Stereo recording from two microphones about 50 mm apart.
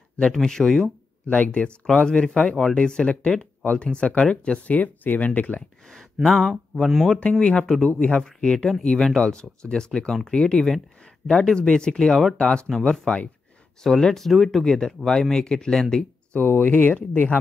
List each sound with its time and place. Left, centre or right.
0.3 s speech: centre
1.2 s speech: left
4.7 s speech: left
6.2 s speech: centre
7.3 s speech: centre
8.2 s speech: centre
16.3 s speech: left